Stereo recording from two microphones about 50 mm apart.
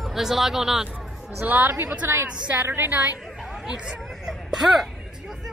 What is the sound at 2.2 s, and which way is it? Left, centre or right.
Speech, right.